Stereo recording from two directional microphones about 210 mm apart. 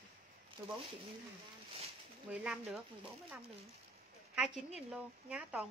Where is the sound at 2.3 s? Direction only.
5° right (ahead or behind).